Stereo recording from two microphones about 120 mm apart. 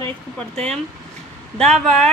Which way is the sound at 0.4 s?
5° left (ahead or behind).